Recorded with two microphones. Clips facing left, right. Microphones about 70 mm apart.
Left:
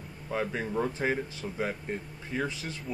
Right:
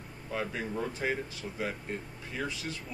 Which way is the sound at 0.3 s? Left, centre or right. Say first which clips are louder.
Left 3 dB; centre.